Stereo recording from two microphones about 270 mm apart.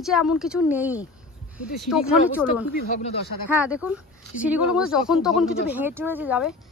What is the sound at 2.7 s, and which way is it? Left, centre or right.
Speech, left.